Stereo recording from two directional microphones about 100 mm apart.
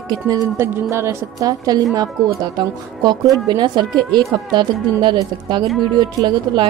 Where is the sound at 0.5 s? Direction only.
25° right (ahead or behind); by 5.2 s 45° right (ahead or behind).